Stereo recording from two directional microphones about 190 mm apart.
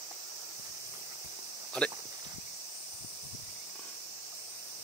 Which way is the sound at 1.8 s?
5° left (ahead or behind).